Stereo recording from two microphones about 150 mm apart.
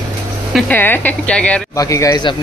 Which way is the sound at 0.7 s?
10° left (ahead or behind).